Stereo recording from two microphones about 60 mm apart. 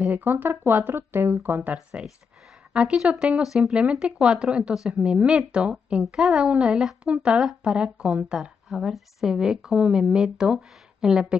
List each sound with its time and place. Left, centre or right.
0.1 s a woman's voice: right; by 8.4 s centre
8.4 s a woman's voice: centre